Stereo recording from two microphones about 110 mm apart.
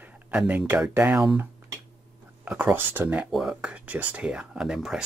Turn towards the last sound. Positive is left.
turn(degrees=-5)  # may be behind; listen again after turning